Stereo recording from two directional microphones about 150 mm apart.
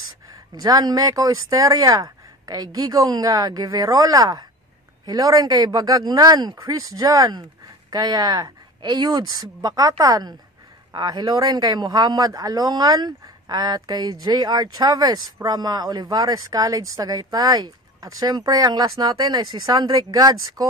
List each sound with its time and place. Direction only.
0.6 s a man's voice: 25° right (ahead or behind)